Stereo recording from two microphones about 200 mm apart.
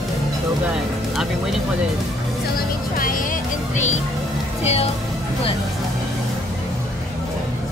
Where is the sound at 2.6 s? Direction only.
45° left (ahead or behind).